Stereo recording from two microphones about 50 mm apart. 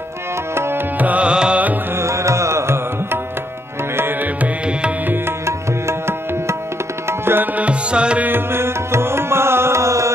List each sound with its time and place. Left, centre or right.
0.9 s music: right
2.0 s music: right
4.2 s music: right
5.9 s music: right
7.1 s tabla: right
7.5 s music: right
8.3 s music: right